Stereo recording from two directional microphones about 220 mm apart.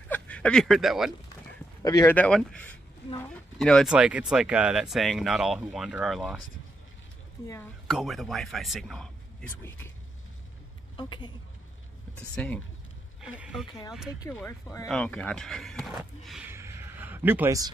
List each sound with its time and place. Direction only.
0.1 s speech: 5° left (ahead or behind)
1.8 s speech: 15° left (ahead or behind); by 6.4 s centre (ahead or behind)
7.4 s speech: 10° left (ahead or behind)
7.9 s speech: centre (ahead or behind)
11.0 s a woman's voice: 20° left (ahead or behind)
12.2 s speech: 5° left (ahead or behind)
14.2 s speech: 10° left (ahead or behind); by 17.6 s 10° right (ahead or behind)